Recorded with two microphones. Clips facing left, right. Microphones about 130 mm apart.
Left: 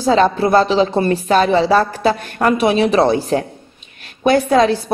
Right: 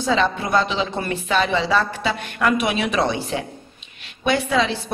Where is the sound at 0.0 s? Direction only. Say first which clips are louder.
Left 7 dB; 40° left (ahead or behind).